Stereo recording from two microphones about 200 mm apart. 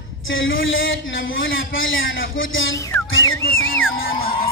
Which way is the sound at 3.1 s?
75° left (ahead or behind).